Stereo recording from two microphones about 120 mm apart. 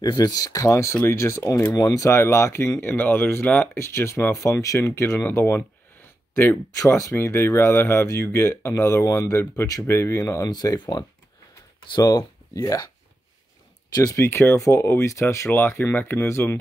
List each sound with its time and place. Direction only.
0.0 s speech: 35° left (ahead or behind)
13.9 s speech: 25° left (ahead or behind)